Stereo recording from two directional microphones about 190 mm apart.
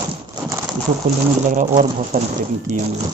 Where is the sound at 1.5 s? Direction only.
40° right (ahead or behind).